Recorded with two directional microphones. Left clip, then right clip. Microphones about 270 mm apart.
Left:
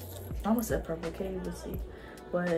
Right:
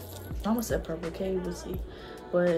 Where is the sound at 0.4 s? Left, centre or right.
Centre.